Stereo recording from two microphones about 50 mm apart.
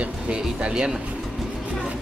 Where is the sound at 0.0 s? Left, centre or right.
Right.